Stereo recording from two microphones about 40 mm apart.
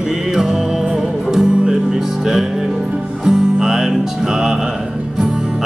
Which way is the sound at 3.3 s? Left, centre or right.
Centre.